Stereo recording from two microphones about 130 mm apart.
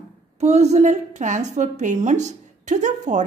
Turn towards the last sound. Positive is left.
turn(degrees=-70)  # may be behind; listen again after turning